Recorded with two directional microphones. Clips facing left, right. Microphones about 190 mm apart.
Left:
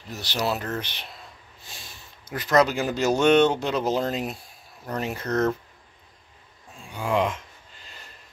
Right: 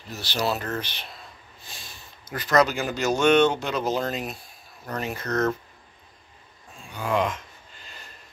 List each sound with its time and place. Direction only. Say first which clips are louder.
0.1 s speech: even; 20° left (ahead or behind)
2.3 s speech: left 1 dB; 25° left (ahead or behind)
7.1 s speech: left 1 dB; 25° left (ahead or behind)